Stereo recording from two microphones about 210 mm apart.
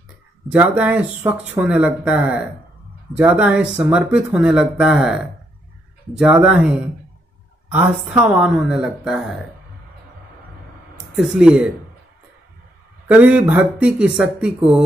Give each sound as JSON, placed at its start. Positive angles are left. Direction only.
{"t": 0.5, "sound": "speech", "side_deg": -10}
{"t": 11.0, "sound": "speech", "side_deg": -5}
{"t": 13.1, "sound": "speech", "side_deg": -5}